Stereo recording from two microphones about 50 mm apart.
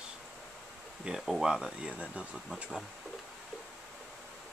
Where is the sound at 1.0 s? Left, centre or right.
Centre.